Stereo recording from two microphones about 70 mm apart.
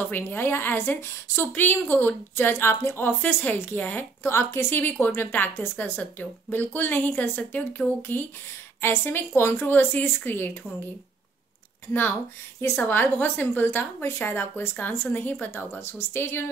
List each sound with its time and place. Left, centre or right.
0.0 s a woman's voice: left
4.3 s a woman's voice: left
12.5 s a woman's voice: left